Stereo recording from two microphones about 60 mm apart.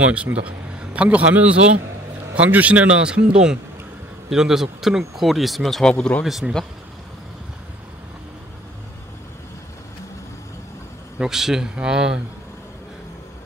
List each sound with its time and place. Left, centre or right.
0.1 s a man's voice: right; by 6.1 s centre
6.4 s speech: centre
11.1 s speech: centre